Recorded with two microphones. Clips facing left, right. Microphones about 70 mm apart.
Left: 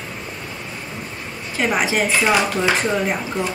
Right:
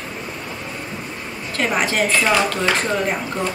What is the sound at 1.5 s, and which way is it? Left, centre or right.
Speech, centre.